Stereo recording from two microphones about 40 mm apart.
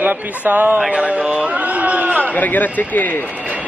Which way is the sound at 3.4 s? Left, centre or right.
Right.